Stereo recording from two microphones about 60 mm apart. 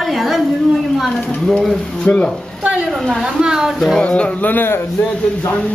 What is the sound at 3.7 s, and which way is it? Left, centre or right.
Speech, centre.